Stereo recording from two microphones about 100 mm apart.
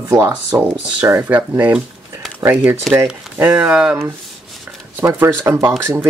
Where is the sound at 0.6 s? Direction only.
25° right (ahead or behind).